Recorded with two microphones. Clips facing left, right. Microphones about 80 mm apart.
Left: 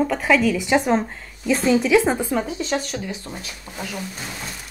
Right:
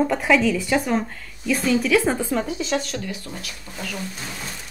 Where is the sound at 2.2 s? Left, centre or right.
Centre.